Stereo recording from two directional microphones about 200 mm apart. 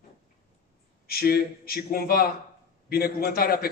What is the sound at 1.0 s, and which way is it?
A man's voice, 50° left (ahead or behind).